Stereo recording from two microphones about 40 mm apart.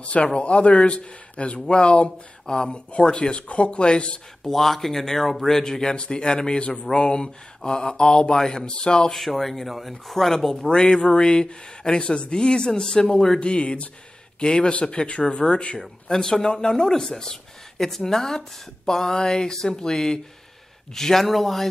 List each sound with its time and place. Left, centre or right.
0.0 s speech: left
4.4 s speech: centre
9.1 s speech: centre
10.7 s speech: left
13.4 s speech: left
15.8 s speech: centre